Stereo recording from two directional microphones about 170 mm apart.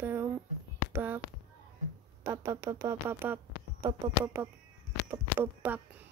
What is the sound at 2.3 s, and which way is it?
A woman's voice, 20° right (ahead or behind).